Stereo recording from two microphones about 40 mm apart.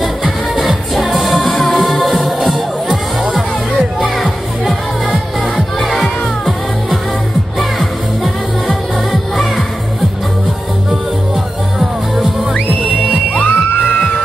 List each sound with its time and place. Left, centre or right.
0.0 s music: centre
5.8 s music: centre
7.8 s music: centre
13.3 s music: left